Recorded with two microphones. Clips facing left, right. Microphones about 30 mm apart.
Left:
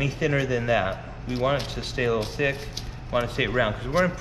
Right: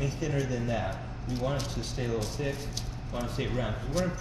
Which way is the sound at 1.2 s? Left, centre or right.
Left.